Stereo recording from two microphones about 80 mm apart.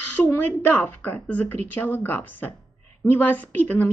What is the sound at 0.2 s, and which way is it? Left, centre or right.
Speech, left.